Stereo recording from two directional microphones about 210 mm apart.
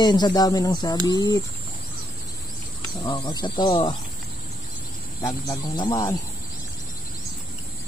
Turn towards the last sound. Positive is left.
turn(degrees=20)  # may be behind; listen again after turning